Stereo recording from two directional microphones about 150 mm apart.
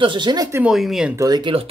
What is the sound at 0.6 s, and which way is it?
Speech, centre (ahead or behind).